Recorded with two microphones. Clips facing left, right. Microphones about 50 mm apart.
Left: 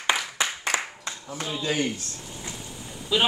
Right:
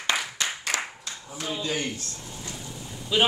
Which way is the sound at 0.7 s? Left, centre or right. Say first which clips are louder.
Left 3 dB; left.